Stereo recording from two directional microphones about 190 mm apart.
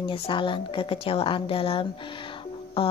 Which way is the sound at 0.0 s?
25° left (ahead or behind).